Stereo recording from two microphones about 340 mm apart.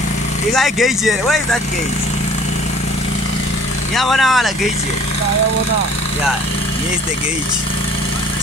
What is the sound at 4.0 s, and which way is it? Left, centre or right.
Speech, centre.